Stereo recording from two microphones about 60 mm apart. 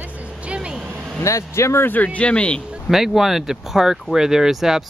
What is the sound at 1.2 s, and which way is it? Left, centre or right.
Speech, left.